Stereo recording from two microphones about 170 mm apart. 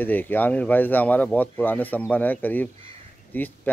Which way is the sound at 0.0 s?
10° left (ahead or behind).